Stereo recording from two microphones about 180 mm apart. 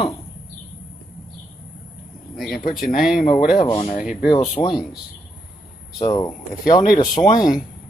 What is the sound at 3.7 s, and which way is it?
Speech, 35° left (ahead or behind).